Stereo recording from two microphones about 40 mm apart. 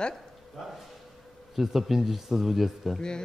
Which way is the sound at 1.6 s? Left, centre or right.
Centre.